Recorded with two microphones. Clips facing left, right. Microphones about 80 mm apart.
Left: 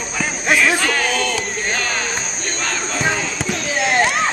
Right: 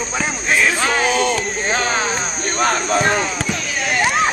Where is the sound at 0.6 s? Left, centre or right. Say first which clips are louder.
Right 3 dB; right.